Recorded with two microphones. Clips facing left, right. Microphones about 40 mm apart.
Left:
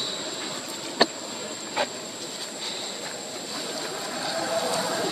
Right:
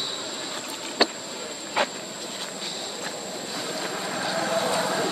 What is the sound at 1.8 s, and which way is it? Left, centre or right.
Vehicle, right.